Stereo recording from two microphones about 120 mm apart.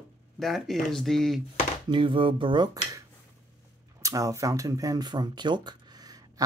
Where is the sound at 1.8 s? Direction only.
45° right (ahead or behind).